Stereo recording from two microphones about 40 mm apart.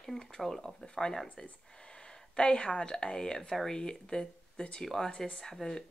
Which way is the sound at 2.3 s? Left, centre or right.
Left.